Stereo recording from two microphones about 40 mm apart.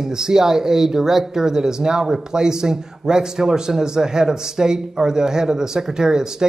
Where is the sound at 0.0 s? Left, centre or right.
Centre.